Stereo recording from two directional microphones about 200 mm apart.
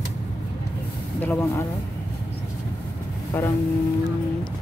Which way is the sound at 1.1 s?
10° left (ahead or behind).